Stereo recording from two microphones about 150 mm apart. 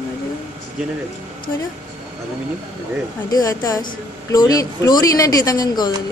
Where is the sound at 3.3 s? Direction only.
25° left (ahead or behind).